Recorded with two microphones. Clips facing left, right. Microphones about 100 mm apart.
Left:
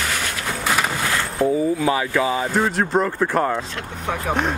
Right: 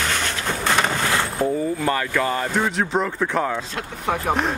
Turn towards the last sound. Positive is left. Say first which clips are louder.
# right 1 dB
turn(degrees=0)  # may be behind; listen again after turning